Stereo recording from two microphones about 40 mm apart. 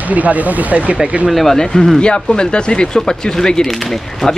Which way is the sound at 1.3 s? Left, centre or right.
Centre.